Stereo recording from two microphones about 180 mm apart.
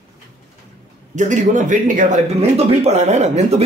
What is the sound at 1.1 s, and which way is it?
Speech, 45° right (ahead or behind).